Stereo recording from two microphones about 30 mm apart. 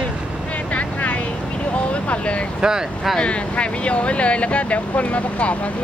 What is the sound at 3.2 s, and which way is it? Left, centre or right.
Speech, left.